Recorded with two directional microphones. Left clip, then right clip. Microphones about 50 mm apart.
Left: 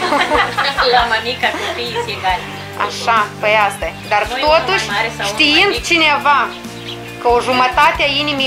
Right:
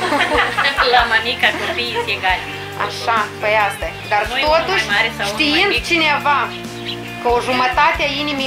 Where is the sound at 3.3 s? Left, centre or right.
Left.